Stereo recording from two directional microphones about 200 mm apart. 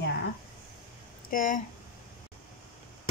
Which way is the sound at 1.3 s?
40° left (ahead or behind).